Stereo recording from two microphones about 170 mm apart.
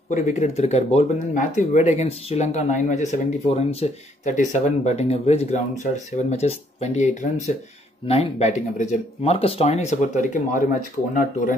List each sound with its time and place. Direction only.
0.1 s speech: 45° left (ahead or behind)